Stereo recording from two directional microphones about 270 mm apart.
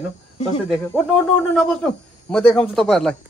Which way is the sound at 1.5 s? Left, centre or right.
Centre.